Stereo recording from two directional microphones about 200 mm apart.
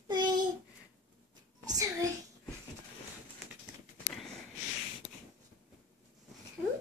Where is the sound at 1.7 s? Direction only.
15° right (ahead or behind).